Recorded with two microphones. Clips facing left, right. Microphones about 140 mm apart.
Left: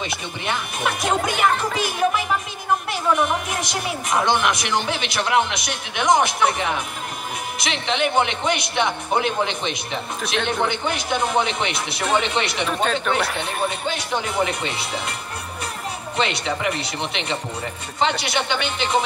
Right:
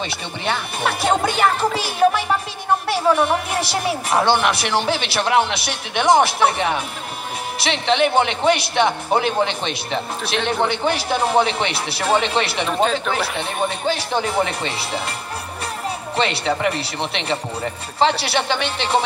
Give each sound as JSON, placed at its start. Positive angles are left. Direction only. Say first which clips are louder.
{"t": 0.1, "sound": "speech", "louder": "right 2 dB", "side_deg": -30}
{"t": 10.2, "sound": "speech", "louder": "left 1 dB", "side_deg": 0}
{"t": 10.7, "sound": "speech", "louder": "right 3 dB", "side_deg": -35}
{"t": 12.6, "sound": "speech", "louder": "right 3 dB", "side_deg": 0}
{"t": 13.8, "sound": "speech", "louder": "right 4 dB", "side_deg": -30}
{"t": 16.2, "sound": "speech", "louder": "right 3 dB", "side_deg": -35}